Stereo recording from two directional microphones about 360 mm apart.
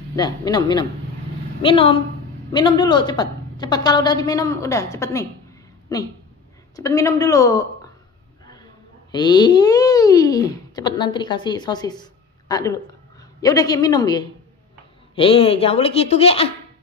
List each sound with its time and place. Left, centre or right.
0.1 s speech: centre
6.8 s speech: centre
9.1 s speech: centre